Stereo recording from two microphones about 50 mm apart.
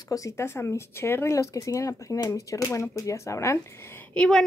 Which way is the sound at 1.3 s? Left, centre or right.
Left.